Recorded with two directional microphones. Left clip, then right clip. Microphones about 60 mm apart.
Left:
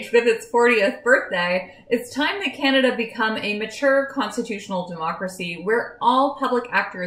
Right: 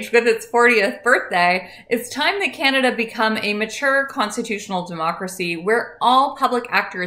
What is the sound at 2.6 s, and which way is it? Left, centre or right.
A woman's voice, right.